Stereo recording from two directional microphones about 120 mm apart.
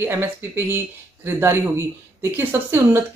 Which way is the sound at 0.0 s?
20° right (ahead or behind).